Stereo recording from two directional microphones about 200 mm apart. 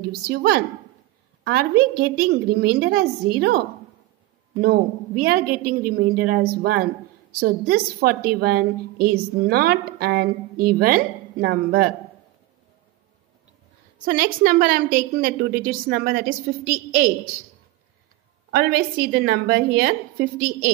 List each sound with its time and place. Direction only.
0.0 s a woman's voice: 50° right (ahead or behind)
14.0 s a woman's voice: 45° right (ahead or behind)
18.5 s a woman's voice: 50° right (ahead or behind)